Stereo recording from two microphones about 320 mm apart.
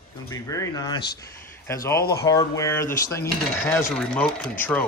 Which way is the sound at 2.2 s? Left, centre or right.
Centre.